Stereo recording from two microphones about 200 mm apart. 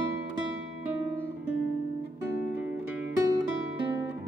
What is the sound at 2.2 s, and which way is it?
Music, 10° right (ahead or behind).